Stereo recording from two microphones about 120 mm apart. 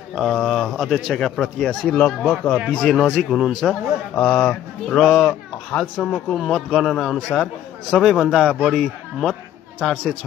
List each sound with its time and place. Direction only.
0.1 s a man's voice: centre (ahead or behind)